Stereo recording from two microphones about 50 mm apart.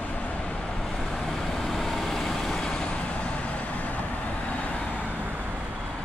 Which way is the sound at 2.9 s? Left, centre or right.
Left.